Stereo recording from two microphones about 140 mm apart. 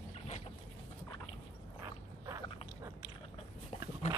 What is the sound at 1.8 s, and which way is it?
Dog, 25° right (ahead or behind).